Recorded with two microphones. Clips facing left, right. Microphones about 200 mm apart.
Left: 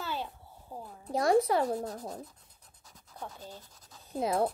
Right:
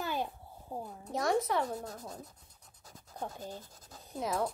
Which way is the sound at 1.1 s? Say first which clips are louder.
Left 5 dB; 35° left (ahead or behind).